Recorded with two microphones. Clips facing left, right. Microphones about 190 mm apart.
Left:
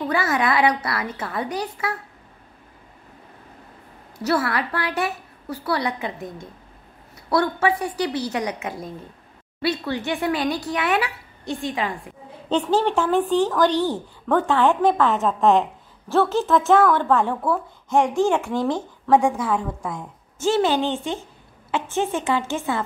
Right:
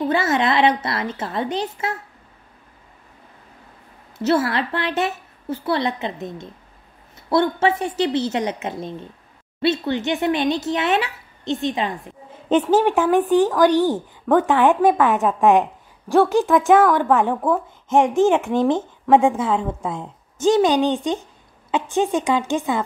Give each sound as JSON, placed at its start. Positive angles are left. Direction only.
{"t": 0.0, "sound": "a woman's voice", "side_deg": -25}
{"t": 4.2, "sound": "a woman's voice", "side_deg": -25}